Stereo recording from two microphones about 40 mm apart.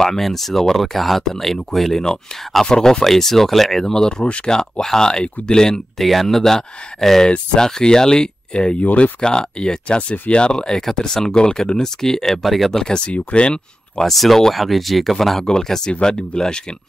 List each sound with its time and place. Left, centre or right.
0.0 s speech: centre
3.9 s speech: left
5.9 s speech: centre; by 8.7 s left
8.8 s speech: left
9.2 s speech: centre
12.8 s speech: left
14.0 s speech: centre; by 16.6 s left